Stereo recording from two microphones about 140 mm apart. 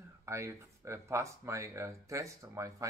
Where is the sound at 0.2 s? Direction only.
20° right (ahead or behind).